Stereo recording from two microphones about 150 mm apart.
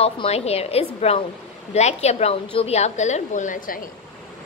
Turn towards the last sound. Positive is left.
turn(degrees=65)  # may be behind; listen again after turning